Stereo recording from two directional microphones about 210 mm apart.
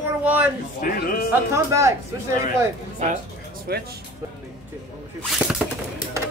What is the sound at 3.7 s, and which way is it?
Speech, 50° right (ahead or behind).